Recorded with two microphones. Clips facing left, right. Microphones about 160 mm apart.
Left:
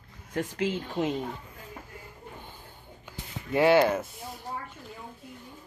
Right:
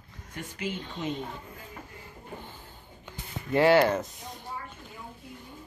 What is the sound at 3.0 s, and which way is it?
Music, 10° left (ahead or behind).